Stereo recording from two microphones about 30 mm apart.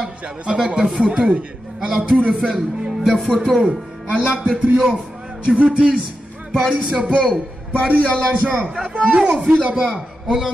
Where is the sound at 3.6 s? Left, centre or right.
Right.